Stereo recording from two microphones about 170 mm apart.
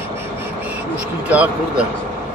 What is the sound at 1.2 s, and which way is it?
Speech, 10° right (ahead or behind).